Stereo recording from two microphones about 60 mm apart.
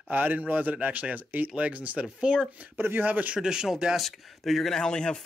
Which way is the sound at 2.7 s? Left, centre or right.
Right.